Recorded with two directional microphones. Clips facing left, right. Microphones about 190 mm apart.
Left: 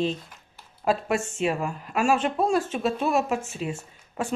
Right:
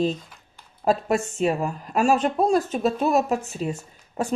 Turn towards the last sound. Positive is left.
turn(degrees=-40)  # may be behind; listen again after turning